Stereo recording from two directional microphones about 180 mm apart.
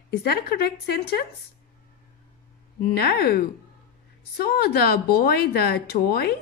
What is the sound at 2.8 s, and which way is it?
Speech, 60° left (ahead or behind).